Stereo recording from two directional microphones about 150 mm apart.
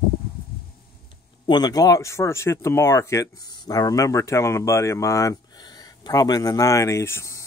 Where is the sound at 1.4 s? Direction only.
30° left (ahead or behind).